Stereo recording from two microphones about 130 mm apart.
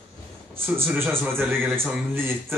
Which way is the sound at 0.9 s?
15° right (ahead or behind).